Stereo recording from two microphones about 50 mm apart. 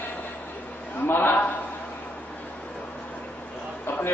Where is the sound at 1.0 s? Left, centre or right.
Left.